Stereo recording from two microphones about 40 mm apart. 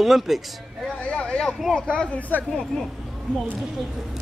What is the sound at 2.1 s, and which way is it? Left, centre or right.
Speech, left.